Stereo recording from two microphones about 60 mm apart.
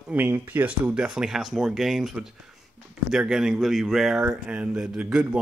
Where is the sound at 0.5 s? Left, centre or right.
Right.